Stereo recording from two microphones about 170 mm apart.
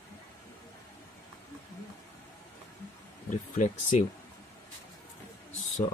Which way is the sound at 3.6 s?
45° left (ahead or behind).